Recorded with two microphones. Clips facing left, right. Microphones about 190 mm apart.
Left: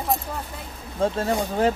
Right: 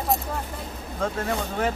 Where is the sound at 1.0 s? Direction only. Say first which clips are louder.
Left 4 dB; 30° left (ahead or behind).